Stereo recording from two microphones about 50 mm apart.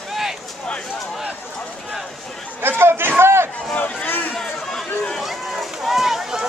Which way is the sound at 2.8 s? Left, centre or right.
Right.